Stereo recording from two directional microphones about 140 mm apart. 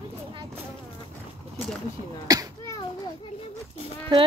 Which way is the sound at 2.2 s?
25° right (ahead or behind).